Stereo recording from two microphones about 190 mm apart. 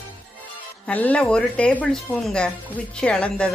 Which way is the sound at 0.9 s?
5° left (ahead or behind).